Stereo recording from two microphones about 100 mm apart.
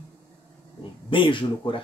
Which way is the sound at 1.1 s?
55° left (ahead or behind).